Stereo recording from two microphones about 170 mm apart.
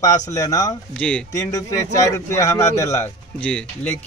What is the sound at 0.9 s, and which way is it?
Speech, 5° left (ahead or behind).